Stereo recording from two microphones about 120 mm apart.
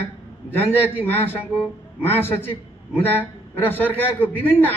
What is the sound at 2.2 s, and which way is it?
A man's voice, 20° left (ahead or behind).